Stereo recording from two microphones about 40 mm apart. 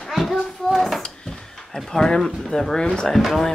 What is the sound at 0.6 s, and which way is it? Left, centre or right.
Dishes, centre.